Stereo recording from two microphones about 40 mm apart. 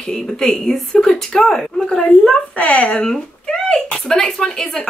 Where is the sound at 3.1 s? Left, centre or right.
Centre.